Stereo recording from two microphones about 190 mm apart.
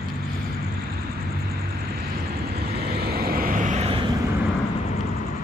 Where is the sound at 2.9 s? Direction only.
55° right (ahead or behind); by 4.1 s 30° right (ahead or behind).